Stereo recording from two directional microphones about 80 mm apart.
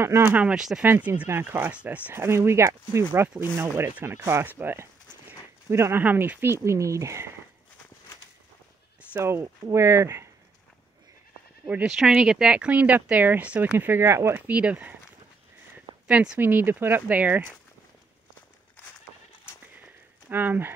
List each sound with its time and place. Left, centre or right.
0.3 s speech: centre
0.8 s speech: right
2.1 s speech: right
6.0 s speech: right
6.5 s speech: right
9.2 s speech: right
11.6 s speech: centre; by 14.4 s right
14.5 s speech: centre
16.1 s speech: centre
16.3 s speech: right
20.2 s speech: right